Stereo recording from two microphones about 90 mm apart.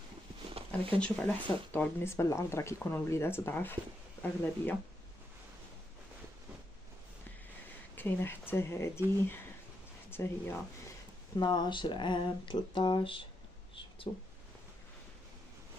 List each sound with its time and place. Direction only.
1.0 s speech: 20° left (ahead or behind)
7.9 s speech: 25° left (ahead or behind)
10.1 s speech: 25° left (ahead or behind)
11.3 s speech: 55° left (ahead or behind); by 13.3 s 70° left (ahead or behind)